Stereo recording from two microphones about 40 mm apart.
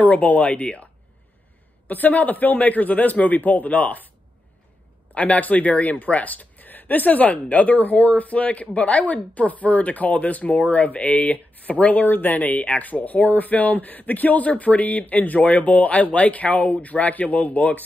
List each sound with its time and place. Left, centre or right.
0.0 s speech: left
1.9 s a man's voice: left
5.1 s speech: left